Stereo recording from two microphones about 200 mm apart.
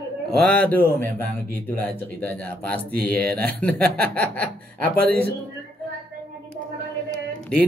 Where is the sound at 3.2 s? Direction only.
50° right (ahead or behind).